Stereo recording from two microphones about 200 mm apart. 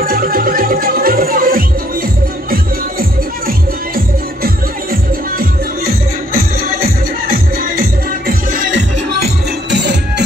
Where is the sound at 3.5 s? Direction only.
45° right (ahead or behind).